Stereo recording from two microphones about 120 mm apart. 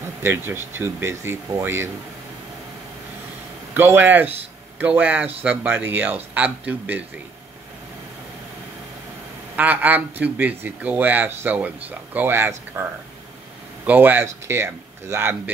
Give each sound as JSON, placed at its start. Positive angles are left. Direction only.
{"t": 0.2, "sound": "speech", "side_deg": -20}
{"t": 3.7, "sound": "speech", "side_deg": -15}
{"t": 9.6, "sound": "speech", "side_deg": -15}
{"t": 13.8, "sound": "speech", "side_deg": -15}